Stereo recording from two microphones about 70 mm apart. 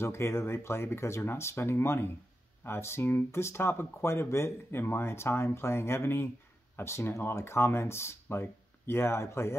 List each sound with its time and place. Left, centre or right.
0.0 s speech: left